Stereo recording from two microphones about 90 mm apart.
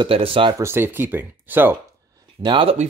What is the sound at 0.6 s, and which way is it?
Speech, 25° right (ahead or behind).